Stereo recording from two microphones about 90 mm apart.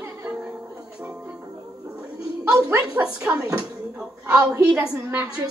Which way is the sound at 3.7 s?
15° right (ahead or behind).